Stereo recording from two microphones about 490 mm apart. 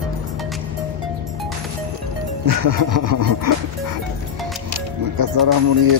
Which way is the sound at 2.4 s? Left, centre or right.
Right.